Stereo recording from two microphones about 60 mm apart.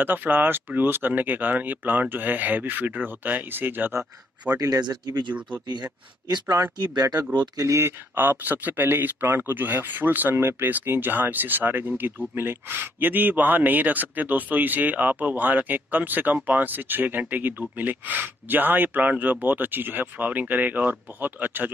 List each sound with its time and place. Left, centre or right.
0.0 s a man's voice: right
4.6 s speech: right
6.4 s speech: right
7.5 s speech: right
8.1 s a man's voice: right